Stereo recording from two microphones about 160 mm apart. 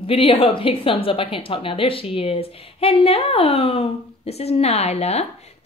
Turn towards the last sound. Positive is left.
turn(degrees=40)  # may be behind; listen again after turning